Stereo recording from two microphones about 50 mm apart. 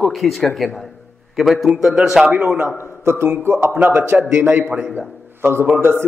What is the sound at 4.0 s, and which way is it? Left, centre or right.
A man's voice, right.